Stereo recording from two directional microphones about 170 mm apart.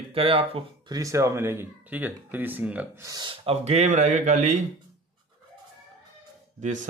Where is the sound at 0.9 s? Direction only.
20° right (ahead or behind).